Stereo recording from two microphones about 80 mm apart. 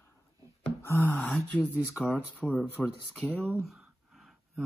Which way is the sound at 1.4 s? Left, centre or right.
Centre.